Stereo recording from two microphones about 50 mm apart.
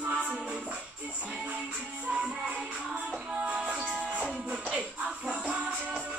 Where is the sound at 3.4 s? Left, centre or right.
Right.